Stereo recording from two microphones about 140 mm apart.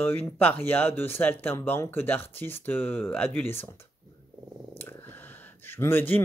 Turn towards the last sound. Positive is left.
turn(degrees=15)  # may be behind; listen again after turning